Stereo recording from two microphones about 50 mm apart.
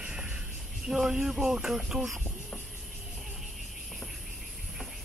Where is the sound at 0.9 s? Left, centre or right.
Centre.